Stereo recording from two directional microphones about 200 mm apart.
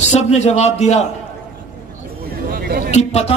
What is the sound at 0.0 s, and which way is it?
A man's voice, 35° left (ahead or behind).